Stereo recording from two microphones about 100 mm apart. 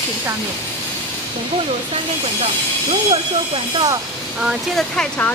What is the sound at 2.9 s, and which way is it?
Speech, 80° right.